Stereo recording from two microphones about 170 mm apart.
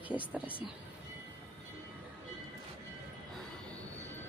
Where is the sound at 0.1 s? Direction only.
10° right (ahead or behind).